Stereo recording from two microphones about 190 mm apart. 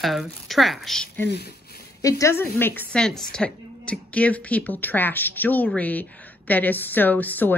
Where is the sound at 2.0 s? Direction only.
15° left (ahead or behind).